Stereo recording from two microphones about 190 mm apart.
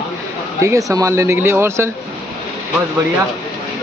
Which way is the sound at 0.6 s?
15° right (ahead or behind).